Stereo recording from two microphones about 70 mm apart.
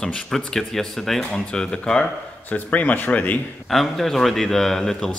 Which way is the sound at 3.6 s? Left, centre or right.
Centre.